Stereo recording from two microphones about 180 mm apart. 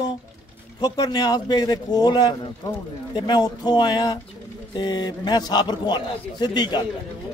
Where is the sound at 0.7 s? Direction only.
20° left (ahead or behind).